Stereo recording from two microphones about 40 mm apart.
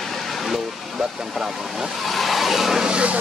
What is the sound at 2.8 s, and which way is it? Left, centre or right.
Speech, right.